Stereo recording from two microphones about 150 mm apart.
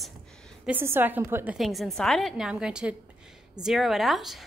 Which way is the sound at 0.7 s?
15° right (ahead or behind).